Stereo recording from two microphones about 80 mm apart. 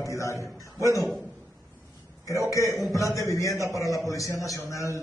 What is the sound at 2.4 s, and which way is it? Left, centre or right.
A man's voice, left.